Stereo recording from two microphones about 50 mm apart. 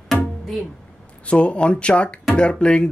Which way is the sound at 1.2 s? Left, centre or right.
Left.